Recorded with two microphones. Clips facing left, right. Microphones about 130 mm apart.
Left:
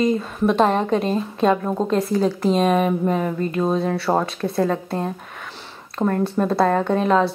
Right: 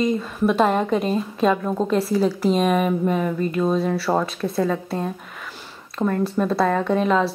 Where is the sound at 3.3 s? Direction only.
30° left (ahead or behind).